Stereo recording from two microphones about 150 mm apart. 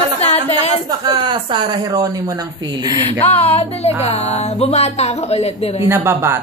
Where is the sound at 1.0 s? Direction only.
30° right (ahead or behind).